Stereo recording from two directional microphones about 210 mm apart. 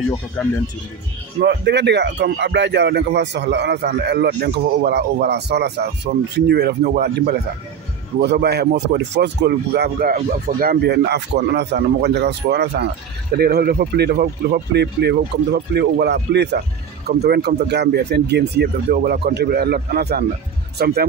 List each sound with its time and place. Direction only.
1.4 s speech: 50° right (ahead or behind)